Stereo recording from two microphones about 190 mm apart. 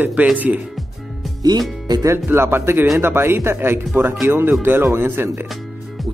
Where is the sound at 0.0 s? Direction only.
10° right (ahead or behind).